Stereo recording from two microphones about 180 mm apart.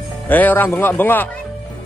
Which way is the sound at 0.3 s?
10° left (ahead or behind).